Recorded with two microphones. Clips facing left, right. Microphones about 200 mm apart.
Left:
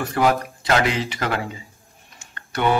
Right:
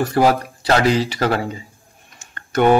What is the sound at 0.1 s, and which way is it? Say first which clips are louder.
Speech: right 4 dB; 35° right (ahead or behind).